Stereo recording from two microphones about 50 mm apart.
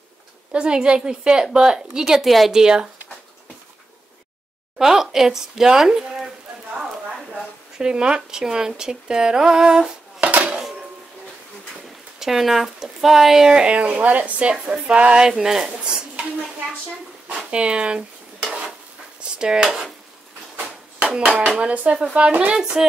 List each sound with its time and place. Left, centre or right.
0.5 s speech: right; by 2.6 s centre
2.6 s speech: centre
4.7 s speech: centre
7.3 s speech: centre
10.2 s dishes: right
12.2 s speech: centre
13.7 s speech: right
17.5 s dishes: right
19.3 s speech: centre
21.0 s hands: centre
21.5 s speech: right
22.8 s speech: centre